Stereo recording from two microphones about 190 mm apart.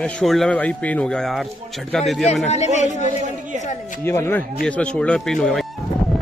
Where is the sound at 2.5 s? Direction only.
35° left (ahead or behind).